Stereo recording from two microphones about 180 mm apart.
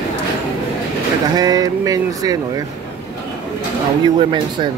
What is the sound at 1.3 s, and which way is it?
Speech, 20° right (ahead or behind).